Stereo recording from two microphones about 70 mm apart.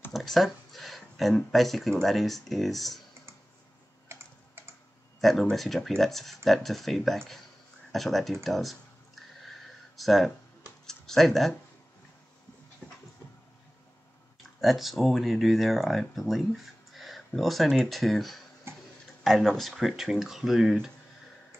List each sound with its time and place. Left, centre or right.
0.1 s speech: centre
5.2 s speech: centre
8.5 s a sound: centre
12.8 s a sound: centre
14.6 s speech: centre
18.7 s tick-tock: right
19.2 s speech: centre